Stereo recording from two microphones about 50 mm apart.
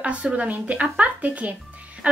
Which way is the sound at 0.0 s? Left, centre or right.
Right.